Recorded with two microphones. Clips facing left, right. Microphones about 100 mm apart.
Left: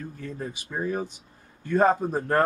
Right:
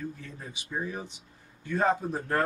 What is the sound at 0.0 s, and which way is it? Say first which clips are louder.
Speech: left 4 dB; 45° left (ahead or behind).